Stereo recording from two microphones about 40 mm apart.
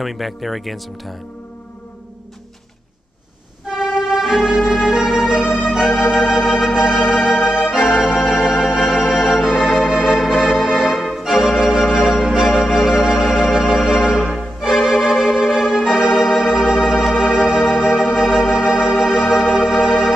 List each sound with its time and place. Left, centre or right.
0.0 s speech: centre
3.8 s music: centre
6.1 s organ: centre